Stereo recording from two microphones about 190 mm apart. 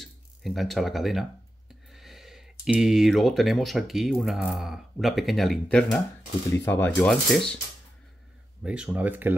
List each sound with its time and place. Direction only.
0.0 s speech: centre (ahead or behind)
8.6 s speech: 5° right (ahead or behind)